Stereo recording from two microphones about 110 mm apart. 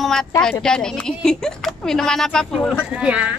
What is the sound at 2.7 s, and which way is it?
Speech, 10° right (ahead or behind).